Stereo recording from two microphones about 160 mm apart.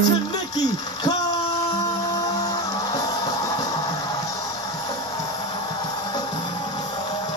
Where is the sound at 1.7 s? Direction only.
25° left (ahead or behind).